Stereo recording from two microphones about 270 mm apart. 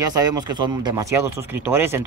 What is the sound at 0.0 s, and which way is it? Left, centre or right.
A man's voice, centre.